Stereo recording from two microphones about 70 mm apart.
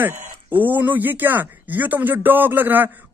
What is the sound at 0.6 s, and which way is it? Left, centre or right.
Speech, right.